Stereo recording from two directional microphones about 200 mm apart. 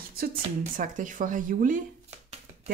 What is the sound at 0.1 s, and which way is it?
Speech, 45° right (ahead or behind).